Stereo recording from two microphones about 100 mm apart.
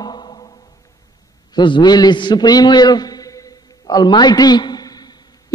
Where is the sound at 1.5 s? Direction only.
50° left (ahead or behind).